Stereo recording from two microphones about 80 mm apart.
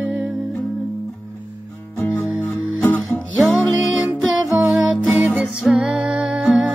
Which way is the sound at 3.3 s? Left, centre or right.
Centre.